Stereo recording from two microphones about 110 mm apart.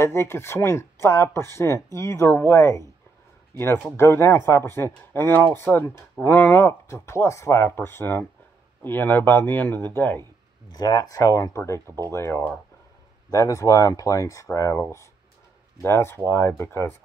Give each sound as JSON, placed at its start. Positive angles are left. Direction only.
{"t": 0.0, "sound": "speech", "side_deg": 25}
{"t": 10.7, "sound": "speech", "side_deg": 35}
{"t": 15.8, "sound": "speech", "side_deg": 25}